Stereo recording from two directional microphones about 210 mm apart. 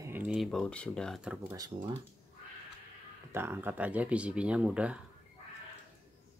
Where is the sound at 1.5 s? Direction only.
15° right (ahead or behind).